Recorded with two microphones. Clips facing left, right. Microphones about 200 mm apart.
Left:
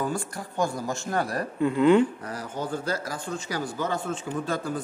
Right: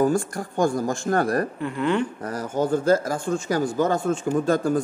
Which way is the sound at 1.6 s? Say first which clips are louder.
Left 5 dB; 20° left (ahead or behind).